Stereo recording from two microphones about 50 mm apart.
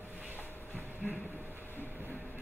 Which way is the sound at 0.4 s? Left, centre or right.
Left.